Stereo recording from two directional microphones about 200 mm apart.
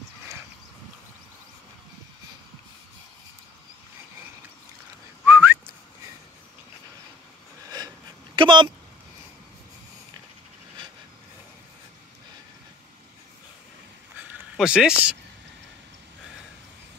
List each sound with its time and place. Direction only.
5.2 s whistling: 10° right (ahead or behind)
8.4 s speech: 25° right (ahead or behind)
14.1 s a sound: 5° right (ahead or behind)